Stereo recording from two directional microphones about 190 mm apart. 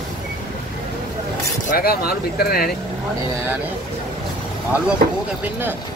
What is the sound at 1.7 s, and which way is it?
Speech, 55° left (ahead or behind).